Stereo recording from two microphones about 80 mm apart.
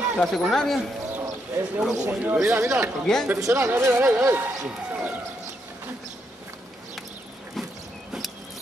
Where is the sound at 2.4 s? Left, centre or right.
Right.